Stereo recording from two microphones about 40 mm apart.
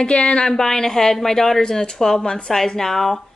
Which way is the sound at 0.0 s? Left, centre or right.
Left.